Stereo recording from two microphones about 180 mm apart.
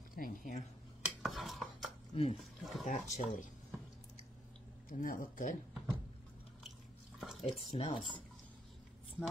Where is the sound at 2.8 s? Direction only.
45° left (ahead or behind).